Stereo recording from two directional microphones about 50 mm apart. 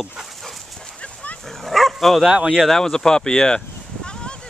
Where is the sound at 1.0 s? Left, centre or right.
Left.